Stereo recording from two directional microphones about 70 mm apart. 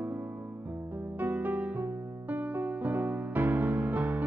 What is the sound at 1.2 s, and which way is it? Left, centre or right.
Music, right.